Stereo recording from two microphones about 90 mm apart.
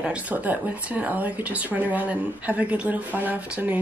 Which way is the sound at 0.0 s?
15° right (ahead or behind).